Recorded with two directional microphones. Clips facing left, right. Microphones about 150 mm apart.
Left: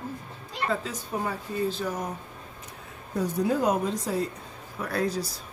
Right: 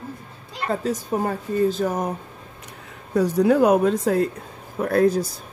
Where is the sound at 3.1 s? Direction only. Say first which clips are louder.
Right 9 dB; 75° right (ahead or behind); by 5.4 s 50° right (ahead or behind).